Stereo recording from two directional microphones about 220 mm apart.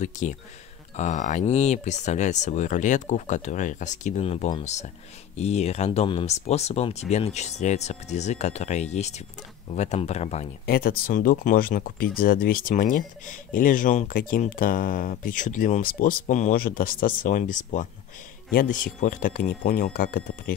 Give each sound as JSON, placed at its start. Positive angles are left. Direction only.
{"t": 0.0, "sound": "speech", "side_deg": 35}
{"t": 10.6, "sound": "speech", "side_deg": 45}